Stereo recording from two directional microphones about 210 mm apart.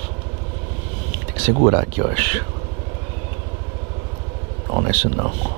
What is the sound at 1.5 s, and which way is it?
Speech, 25° right (ahead or behind).